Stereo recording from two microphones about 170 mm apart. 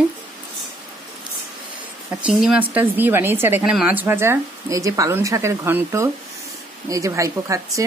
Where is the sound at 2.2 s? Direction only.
5° right (ahead or behind).